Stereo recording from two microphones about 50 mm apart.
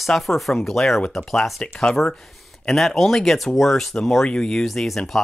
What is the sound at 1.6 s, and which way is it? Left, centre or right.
Speech, centre.